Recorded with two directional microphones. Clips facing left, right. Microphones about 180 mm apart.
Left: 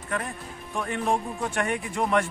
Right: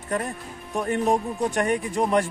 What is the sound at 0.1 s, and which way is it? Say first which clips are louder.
A man's voice: right 4 dB; 40° right (ahead or behind).